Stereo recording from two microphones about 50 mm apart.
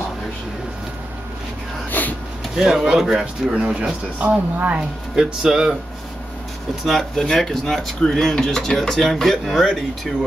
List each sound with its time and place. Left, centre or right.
1.9 s a sound: left
2.5 s speech: centre
3.5 s speech: right
5.1 s speech: centre
6.9 s speech: centre